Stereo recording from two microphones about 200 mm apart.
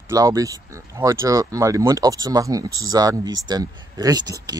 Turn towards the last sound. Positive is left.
turn(degrees=-20)  # may be behind; listen again after turning